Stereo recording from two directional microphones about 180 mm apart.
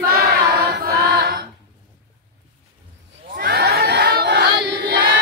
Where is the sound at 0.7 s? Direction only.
60° right (ahead or behind).